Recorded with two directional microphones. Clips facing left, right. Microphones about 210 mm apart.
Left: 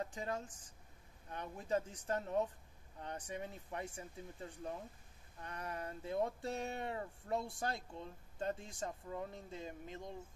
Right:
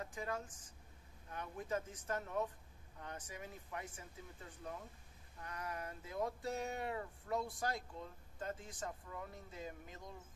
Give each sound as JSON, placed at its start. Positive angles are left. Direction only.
{"t": 0.0, "sound": "a woman's voice", "side_deg": 30}